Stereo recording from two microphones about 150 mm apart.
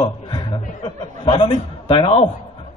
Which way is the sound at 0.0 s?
30° left (ahead or behind).